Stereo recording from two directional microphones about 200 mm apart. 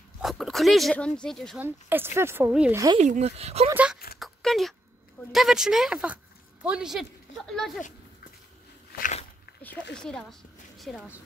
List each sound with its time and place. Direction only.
0.2 s speech: centre (ahead or behind)
1.6 s speech: 10° right (ahead or behind)
3.0 s speech: 35° right (ahead or behind)
3.7 s speech: 5° right (ahead or behind)
4.2 s a sound: centre (ahead or behind)
5.3 s speech: centre (ahead or behind)
9.9 s a woman's voice: 5° left (ahead or behind)